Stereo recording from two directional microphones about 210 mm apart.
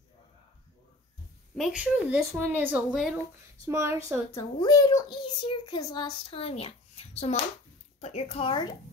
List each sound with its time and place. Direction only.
1.6 s speech: 5° right (ahead or behind)
3.6 s speech: 15° right (ahead or behind)
4.3 s a child's voice: 15° left (ahead or behind)